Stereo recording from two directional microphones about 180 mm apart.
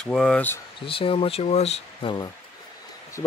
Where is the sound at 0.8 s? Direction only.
30° left (ahead or behind).